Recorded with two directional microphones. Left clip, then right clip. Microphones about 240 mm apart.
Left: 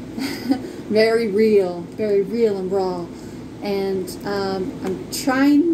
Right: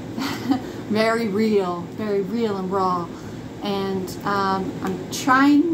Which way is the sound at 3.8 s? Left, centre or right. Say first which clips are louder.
Left 3 dB; right.